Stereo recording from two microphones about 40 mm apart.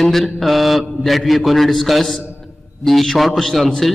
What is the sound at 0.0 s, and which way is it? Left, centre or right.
A man's voice, centre.